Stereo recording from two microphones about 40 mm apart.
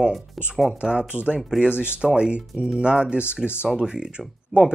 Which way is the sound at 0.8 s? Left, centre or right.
Right.